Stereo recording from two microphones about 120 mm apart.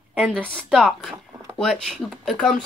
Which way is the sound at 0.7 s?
Centre (ahead or behind).